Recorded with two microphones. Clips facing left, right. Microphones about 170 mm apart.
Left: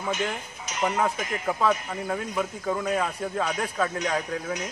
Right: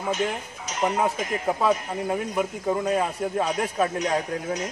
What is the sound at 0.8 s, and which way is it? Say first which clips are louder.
A man's voice: right 2 dB; 10° right (ahead or behind).